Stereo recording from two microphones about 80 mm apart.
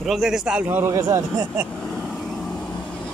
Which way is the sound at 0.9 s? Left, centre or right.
Right.